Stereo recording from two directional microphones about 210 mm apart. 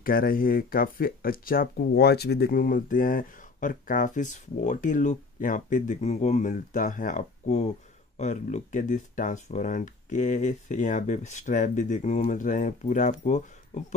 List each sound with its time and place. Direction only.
0.0 s speech: 45° left (ahead or behind)